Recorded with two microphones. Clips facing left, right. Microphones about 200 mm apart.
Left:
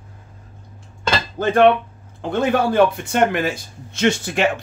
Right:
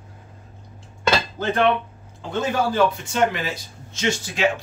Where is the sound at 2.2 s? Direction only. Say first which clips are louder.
Left 4 dB; 60° left (ahead or behind).